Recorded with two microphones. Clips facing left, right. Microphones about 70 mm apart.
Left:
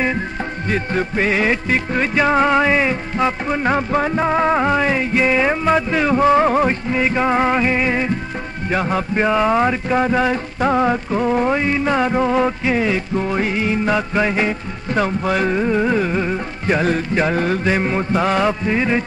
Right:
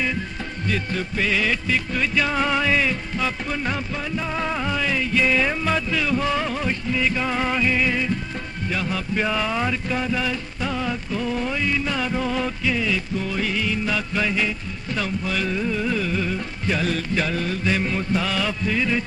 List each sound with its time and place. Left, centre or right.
0.7 s music: left